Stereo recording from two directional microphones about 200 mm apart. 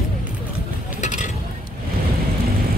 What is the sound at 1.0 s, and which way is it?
Vehicle, 35° left (ahead or behind).